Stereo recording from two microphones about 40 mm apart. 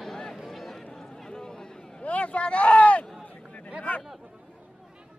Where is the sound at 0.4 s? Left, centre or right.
Centre.